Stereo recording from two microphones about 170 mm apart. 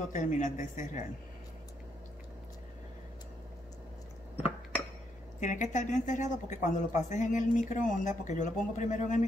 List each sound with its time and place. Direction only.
0.1 s speech: 50° left (ahead or behind)
5.4 s speech: 45° left (ahead or behind)